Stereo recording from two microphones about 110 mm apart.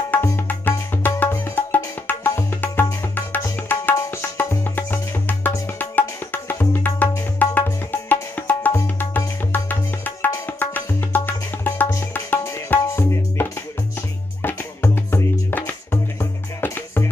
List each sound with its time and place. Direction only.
0.1 s music: 15° left (ahead or behind)